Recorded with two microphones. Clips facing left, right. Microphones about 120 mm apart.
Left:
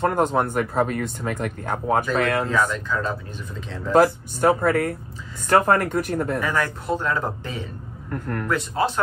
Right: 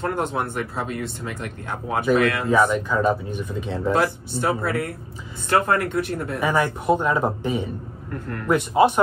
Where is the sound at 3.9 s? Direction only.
45° left (ahead or behind).